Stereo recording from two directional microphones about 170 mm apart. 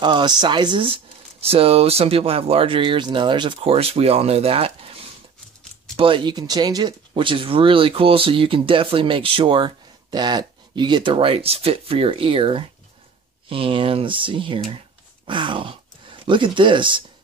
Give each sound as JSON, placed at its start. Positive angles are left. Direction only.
{"t": 0.0, "sound": "speech", "side_deg": -25}
{"t": 5.9, "sound": "speech", "side_deg": -30}